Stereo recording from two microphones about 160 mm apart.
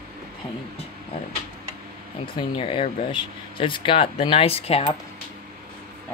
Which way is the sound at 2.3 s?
35° left (ahead or behind).